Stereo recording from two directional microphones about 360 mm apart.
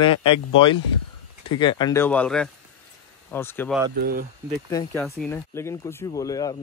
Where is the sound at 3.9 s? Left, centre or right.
Right.